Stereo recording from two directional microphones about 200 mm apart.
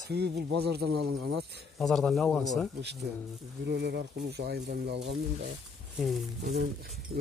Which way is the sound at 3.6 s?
55° right (ahead or behind).